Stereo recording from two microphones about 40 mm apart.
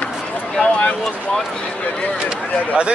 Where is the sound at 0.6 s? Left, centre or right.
Left.